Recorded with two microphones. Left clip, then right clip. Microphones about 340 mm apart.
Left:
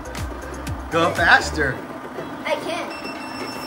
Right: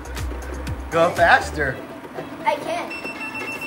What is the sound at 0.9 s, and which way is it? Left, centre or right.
Speech, centre.